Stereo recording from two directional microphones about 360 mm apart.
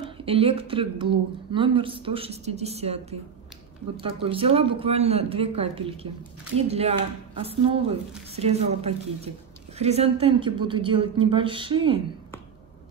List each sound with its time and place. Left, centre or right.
0.0 s a woman's voice: centre